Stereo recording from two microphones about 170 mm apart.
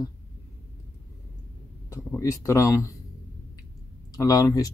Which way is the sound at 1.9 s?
15° left (ahead or behind).